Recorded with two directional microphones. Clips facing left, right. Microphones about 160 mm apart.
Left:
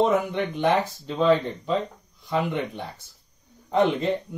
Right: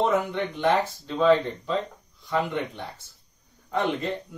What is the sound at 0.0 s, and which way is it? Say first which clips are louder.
Speech: left 2 dB; 15° left (ahead or behind).